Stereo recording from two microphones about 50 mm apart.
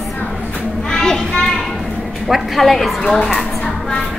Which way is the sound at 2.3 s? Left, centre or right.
Centre.